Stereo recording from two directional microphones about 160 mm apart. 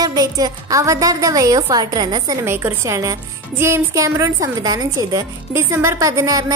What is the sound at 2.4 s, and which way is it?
A woman's voice, 15° right (ahead or behind).